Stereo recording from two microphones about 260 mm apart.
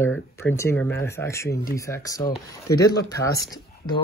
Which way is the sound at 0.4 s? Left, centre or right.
Centre.